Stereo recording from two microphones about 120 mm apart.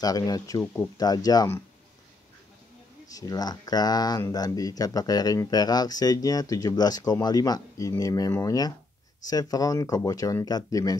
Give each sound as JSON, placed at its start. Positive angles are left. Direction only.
{"t": 0.0, "sound": "speech", "side_deg": 30}
{"t": 3.1, "sound": "speech", "side_deg": 30}